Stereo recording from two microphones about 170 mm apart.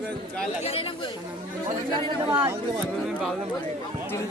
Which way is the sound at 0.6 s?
35° left (ahead or behind).